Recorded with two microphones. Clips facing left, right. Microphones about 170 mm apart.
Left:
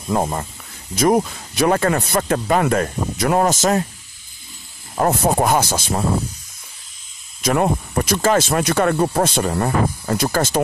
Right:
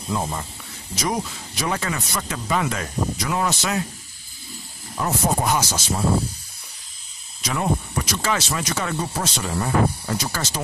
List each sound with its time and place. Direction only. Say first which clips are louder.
0.1 s speech: left 6 dB; 50° left (ahead or behind)
4.9 s speech: left 6 dB; 55° left (ahead or behind)
7.4 s speech: left 6 dB; 50° left (ahead or behind)